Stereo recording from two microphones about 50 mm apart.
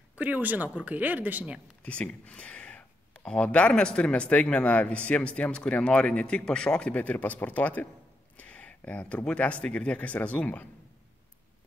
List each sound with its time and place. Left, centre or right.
0.1 s speech: right
1.8 s a man's voice: left
8.4 s a sound: left
9.3 s a man's voice: left